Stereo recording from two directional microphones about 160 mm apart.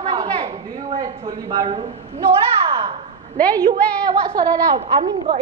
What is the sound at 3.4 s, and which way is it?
Speech, 10° left (ahead or behind).